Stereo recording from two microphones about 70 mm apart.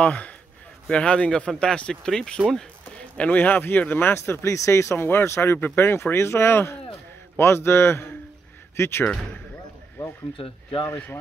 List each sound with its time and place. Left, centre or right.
0.0 s speech: centre; by 9.0 s left
9.0 s speech: centre